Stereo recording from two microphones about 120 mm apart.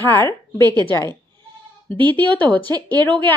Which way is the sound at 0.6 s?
35° right (ahead or behind).